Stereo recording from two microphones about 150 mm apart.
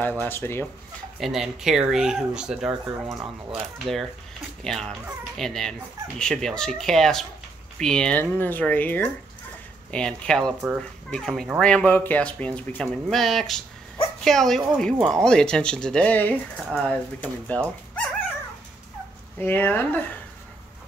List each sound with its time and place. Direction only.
0.0 s speech: 10° left (ahead or behind)
1.2 s speech: centre (ahead or behind)
19.3 s speech: 15° left (ahead or behind)